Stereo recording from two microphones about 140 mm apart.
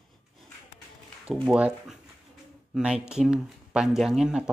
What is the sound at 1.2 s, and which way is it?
Speech, 5° right (ahead or behind).